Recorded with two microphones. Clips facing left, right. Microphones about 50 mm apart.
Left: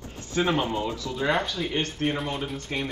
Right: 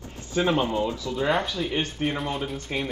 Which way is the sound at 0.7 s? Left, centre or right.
Left.